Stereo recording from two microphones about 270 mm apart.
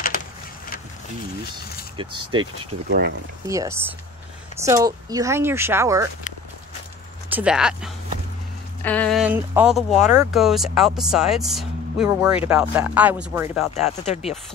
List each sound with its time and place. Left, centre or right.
1.4 s speech: left
2.0 s speech: centre
2.9 s speech: right
3.4 s speech: centre
7.2 s speech: centre
13.7 s speech: left